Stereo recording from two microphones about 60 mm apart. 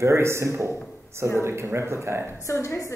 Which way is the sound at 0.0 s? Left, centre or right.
Right.